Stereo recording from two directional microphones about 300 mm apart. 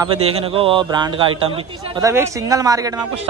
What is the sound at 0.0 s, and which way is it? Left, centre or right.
A man's voice, centre.